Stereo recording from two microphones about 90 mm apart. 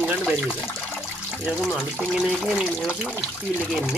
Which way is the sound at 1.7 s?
Centre (ahead or behind).